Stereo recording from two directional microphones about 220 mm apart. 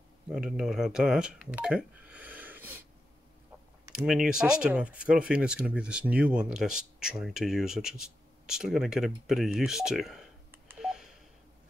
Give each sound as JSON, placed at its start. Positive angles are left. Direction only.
{"t": 0.3, "sound": "speech", "side_deg": -5}
{"t": 3.9, "sound": "speech", "side_deg": -5}